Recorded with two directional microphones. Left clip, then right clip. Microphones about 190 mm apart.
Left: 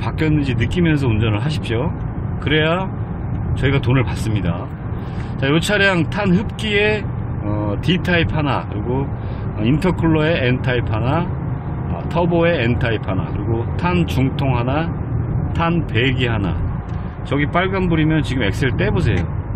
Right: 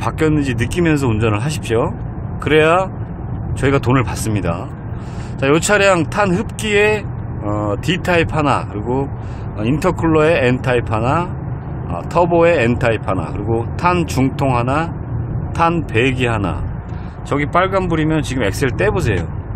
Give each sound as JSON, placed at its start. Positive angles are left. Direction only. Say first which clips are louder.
{"t": 0.5, "sound": "speech", "louder": "right 3 dB", "side_deg": -30}